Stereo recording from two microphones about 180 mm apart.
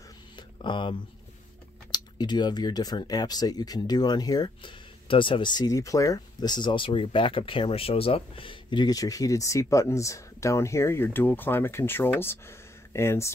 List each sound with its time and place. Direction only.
0.6 s speech: 25° left (ahead or behind)